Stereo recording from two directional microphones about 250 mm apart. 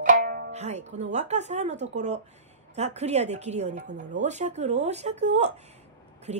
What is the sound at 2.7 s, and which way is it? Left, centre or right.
A woman's voice, right.